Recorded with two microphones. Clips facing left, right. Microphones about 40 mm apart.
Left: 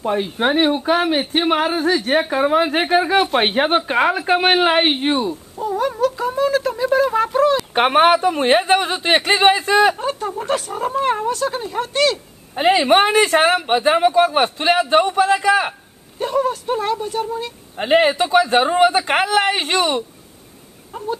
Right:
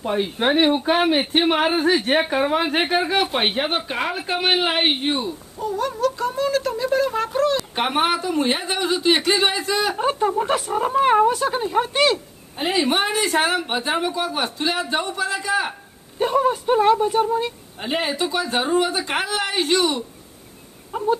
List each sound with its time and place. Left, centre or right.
0.0 s speech: centre
0.7 s speech: centre
2.3 s speech: centre
3.5 s speech: centre
7.7 s speech: left
9.9 s speech: right
12.5 s speech: left
16.2 s speech: centre
17.7 s speech: left
20.9 s speech: centre